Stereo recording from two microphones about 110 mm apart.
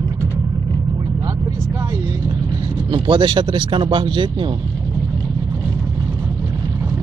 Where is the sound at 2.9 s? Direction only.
50° right (ahead or behind).